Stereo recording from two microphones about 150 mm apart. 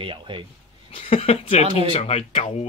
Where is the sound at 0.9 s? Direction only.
40° left (ahead or behind).